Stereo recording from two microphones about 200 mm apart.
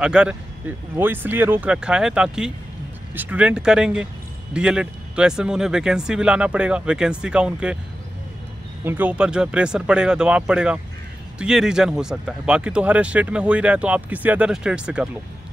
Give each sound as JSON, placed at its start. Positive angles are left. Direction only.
{"t": 0.0, "sound": "speech", "side_deg": -5}
{"t": 8.8, "sound": "speech", "side_deg": -10}